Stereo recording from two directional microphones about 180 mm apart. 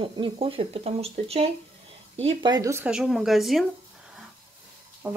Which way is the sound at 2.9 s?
Centre (ahead or behind).